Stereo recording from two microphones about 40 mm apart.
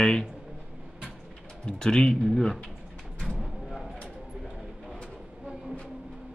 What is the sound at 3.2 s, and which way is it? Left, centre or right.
Vehicle, centre.